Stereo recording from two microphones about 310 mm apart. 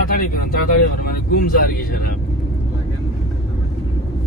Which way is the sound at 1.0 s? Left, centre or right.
Left.